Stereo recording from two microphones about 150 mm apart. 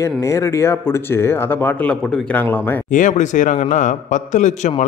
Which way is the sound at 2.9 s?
55° left (ahead or behind).